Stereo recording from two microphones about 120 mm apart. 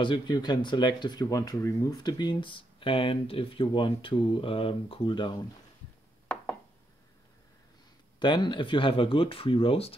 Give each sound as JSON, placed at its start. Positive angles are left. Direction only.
{"t": 0.0, "sound": "speech", "side_deg": 40}
{"t": 8.2, "sound": "speech", "side_deg": 40}